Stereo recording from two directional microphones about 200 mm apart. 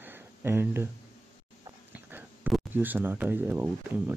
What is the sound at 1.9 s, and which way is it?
Speech, 10° right (ahead or behind).